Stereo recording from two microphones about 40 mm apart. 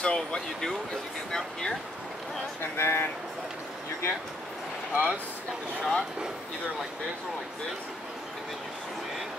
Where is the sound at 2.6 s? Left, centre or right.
Left.